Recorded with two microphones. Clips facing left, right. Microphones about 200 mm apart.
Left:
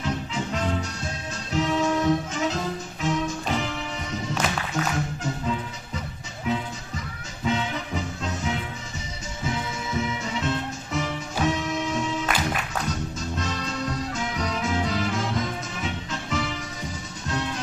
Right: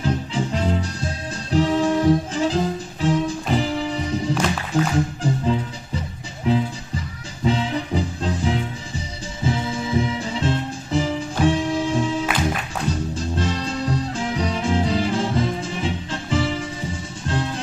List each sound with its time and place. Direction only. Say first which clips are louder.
0.0 s music: right 5 dB; 30° right (ahead or behind)